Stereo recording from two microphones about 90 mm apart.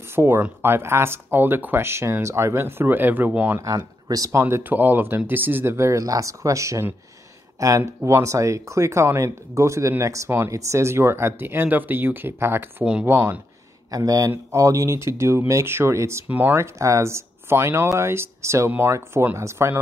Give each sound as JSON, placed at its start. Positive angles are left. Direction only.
{"t": 0.1, "sound": "speech", "side_deg": -25}
{"t": 3.6, "sound": "speech", "side_deg": -40}
{"t": 13.8, "sound": "speech", "side_deg": -40}